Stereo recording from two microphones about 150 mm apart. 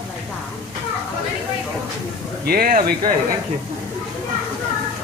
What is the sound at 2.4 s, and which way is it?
Speech, 85° right.